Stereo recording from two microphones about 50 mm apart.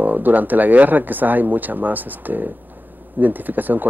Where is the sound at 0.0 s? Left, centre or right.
Right.